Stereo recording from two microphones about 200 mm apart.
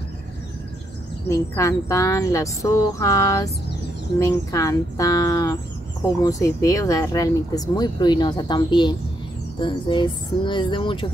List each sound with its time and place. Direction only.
1.3 s speech: 15° left (ahead or behind)